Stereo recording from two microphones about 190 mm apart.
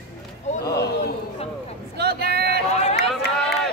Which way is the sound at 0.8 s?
60° left (ahead or behind).